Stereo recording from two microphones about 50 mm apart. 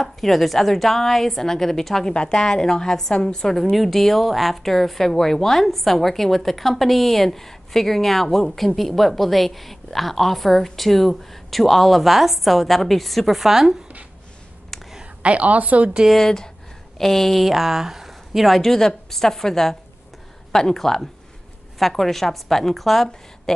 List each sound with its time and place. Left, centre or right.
0.0 s speech: centre
2.1 s a woman's voice: centre
15.2 s a woman's voice: right
16.1 s a woman's voice: centre